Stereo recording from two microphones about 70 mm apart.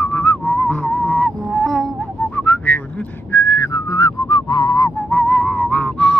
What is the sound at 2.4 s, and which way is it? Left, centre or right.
Whistling, left.